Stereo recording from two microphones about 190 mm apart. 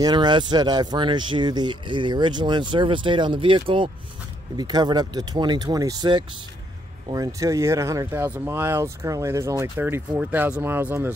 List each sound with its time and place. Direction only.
0.0 s speech: 25° right (ahead or behind)